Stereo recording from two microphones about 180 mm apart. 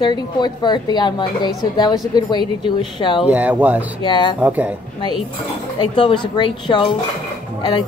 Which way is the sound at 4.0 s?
25° left (ahead or behind).